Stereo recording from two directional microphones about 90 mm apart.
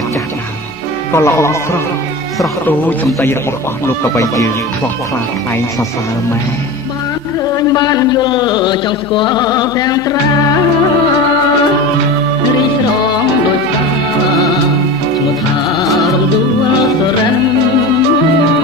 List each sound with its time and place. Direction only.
1.1 s speech: 30° left (ahead or behind)
3.8 s speech: 35° left (ahead or behind)
7.5 s a sound: 45° left (ahead or behind)
15.8 s music: centre (ahead or behind)